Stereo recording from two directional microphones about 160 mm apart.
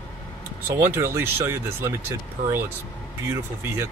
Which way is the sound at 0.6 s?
15° right (ahead or behind).